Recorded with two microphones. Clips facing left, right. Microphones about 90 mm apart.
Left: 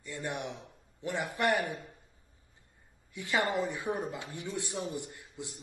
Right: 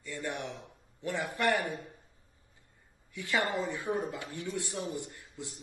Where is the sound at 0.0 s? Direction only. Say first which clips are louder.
Even; 20° left (ahead or behind).